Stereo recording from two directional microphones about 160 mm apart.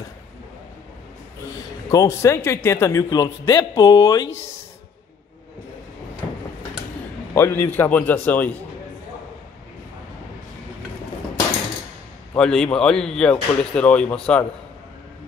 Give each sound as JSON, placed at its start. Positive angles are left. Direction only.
{"t": 1.9, "sound": "a man's voice", "side_deg": 20}
{"t": 7.3, "sound": "a man's voice", "side_deg": 15}
{"t": 12.4, "sound": "speech", "side_deg": 5}